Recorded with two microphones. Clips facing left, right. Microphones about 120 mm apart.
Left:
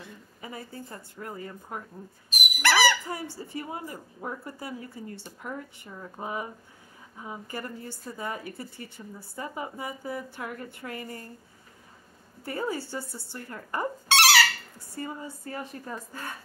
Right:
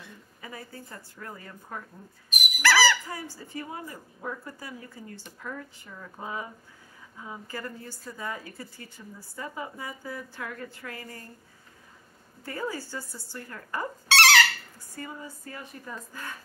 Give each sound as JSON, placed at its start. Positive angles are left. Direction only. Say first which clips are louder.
{"t": 0.4, "sound": "a woman's voice", "louder": "left 2 dB", "side_deg": 25}
{"t": 12.4, "sound": "a woman's voice", "louder": "left 2 dB", "side_deg": 25}